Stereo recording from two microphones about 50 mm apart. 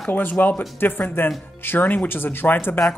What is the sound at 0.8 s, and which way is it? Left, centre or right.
Speech, left.